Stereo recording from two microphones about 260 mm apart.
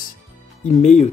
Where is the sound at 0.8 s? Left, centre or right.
Left.